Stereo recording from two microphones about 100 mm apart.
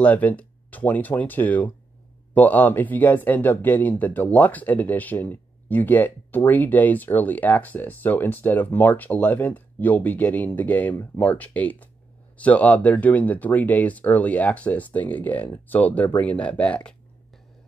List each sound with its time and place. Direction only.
0.0 s speech: 15° left (ahead or behind)